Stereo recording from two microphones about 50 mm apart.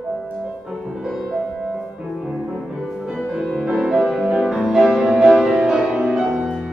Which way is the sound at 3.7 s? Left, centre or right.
Centre.